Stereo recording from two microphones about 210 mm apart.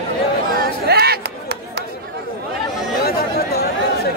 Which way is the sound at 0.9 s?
50° right (ahead or behind).